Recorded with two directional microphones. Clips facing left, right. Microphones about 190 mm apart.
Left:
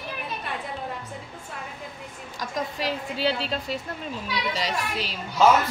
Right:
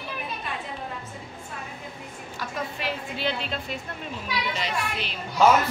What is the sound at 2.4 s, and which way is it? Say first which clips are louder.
A woman's voice: left 3 dB; 40° left (ahead or behind).